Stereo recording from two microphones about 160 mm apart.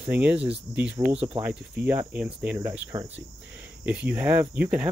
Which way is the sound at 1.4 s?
10° right (ahead or behind).